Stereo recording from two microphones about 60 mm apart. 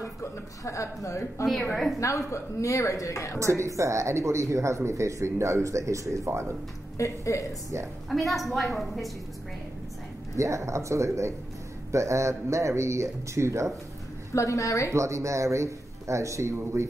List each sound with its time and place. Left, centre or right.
0.0 s a woman's voice: left
3.3 s speech: right
7.0 s a woman's voice: left
8.1 s a woman's voice: centre
10.3 s speech: right
14.3 s a woman's voice: left
14.9 s speech: right